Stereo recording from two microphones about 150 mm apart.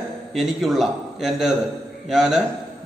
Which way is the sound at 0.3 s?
Centre (ahead or behind).